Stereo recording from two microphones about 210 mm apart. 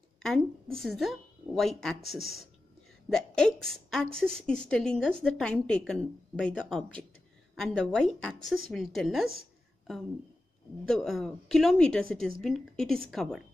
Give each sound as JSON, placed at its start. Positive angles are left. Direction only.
{"t": 0.2, "sound": "a woman's voice", "side_deg": 0}
{"t": 10.9, "sound": "a woman's voice", "side_deg": 0}